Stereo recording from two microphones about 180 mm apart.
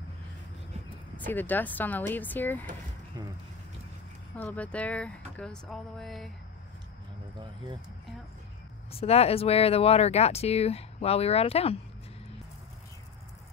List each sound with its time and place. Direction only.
1.1 s speech: 10° left (ahead or behind)
3.1 s speech: 20° right (ahead or behind)
4.4 s speech: 5° left (ahead or behind)
8.9 s speech: 35° left (ahead or behind)